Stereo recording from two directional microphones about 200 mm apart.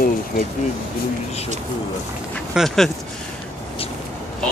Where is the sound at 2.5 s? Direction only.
Centre (ahead or behind).